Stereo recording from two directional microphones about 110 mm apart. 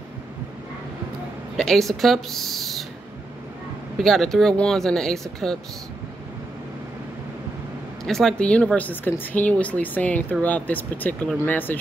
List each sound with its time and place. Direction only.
1.6 s speech: 5° left (ahead or behind)
4.0 s speech: 5° left (ahead or behind)
8.0 s speech: 5° left (ahead or behind)